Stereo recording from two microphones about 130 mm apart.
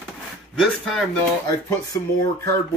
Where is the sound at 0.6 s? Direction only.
5° left (ahead or behind).